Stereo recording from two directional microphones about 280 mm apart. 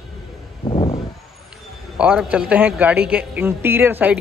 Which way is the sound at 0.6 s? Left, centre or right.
Centre.